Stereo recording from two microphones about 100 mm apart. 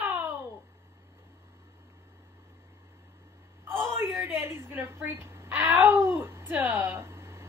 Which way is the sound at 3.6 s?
25° right (ahead or behind).